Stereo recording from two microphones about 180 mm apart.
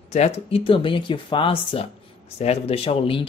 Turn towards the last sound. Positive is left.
turn(degrees=30)  # may be behind; listen again after turning